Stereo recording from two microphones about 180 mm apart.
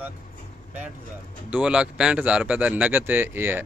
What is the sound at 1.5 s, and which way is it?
Speech, 5° right (ahead or behind).